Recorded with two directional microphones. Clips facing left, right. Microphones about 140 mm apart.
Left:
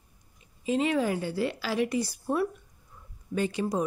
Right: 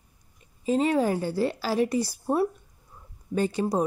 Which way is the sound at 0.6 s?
40° right (ahead or behind).